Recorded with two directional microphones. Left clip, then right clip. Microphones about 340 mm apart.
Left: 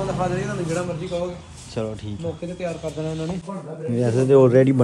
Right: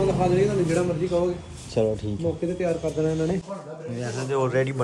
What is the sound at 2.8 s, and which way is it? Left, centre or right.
Speech, left.